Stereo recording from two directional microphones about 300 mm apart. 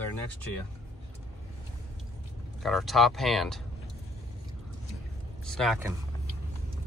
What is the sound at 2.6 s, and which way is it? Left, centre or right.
Speech, centre.